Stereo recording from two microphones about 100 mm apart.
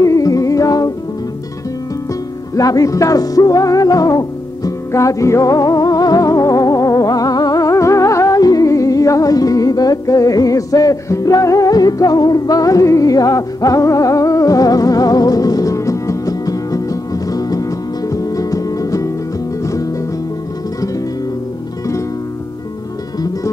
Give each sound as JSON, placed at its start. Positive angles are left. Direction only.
{"t": 0.0, "sound": "music", "side_deg": 35}
{"t": 2.5, "sound": "music", "side_deg": 35}